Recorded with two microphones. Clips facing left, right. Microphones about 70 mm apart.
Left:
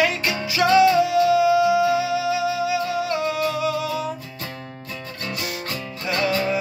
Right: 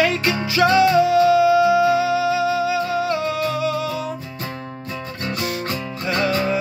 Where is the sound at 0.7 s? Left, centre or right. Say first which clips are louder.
Even; centre.